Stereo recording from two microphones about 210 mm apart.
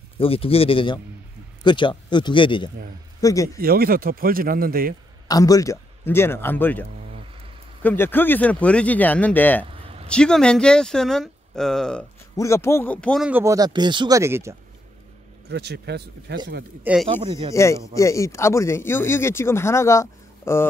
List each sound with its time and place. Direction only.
0.2 s a man's voice: 25° left (ahead or behind)
3.5 s a man's voice: 45° right (ahead or behind)
5.3 s speech: 15° left (ahead or behind)
7.8 s speech: 10° left (ahead or behind)
9.7 s a sound: 25° right (ahead or behind)
10.0 s speech: 5° left (ahead or behind)
12.4 s speech: 15° left (ahead or behind); by 14.5 s 15° right (ahead or behind)
15.4 s a man's voice: 55° right (ahead or behind)
16.8 s speech: 5° right (ahead or behind)
17.1 s speech: 25° right (ahead or behind)
17.5 s speech: 15° left (ahead or behind)